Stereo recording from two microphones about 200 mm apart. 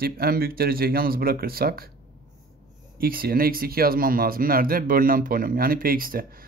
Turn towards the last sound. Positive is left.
turn(degrees=-45)  # may be behind; listen again after turning